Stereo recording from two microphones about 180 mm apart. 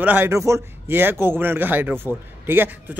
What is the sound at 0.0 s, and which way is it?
Speech, 10° right (ahead or behind).